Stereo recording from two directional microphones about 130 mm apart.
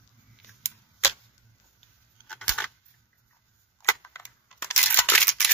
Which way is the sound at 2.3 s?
10° left (ahead or behind).